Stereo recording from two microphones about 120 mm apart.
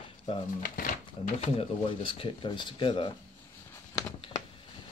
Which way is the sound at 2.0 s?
45° left (ahead or behind).